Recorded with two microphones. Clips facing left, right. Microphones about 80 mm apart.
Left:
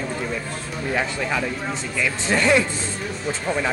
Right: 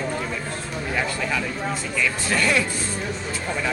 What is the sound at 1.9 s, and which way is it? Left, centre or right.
Speech, left.